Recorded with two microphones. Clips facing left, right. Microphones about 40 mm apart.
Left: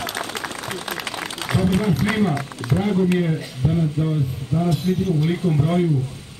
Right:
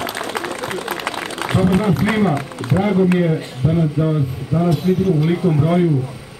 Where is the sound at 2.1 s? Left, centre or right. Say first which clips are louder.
Right 4 dB; right.